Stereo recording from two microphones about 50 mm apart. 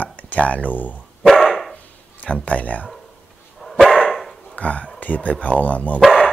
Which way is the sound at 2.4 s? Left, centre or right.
Left.